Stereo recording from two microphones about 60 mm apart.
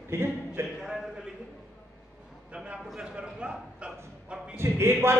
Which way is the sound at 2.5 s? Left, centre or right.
Centre.